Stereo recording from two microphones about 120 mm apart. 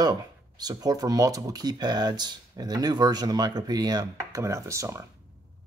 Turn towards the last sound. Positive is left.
turn(degrees=-25)  # may be behind; listen again after turning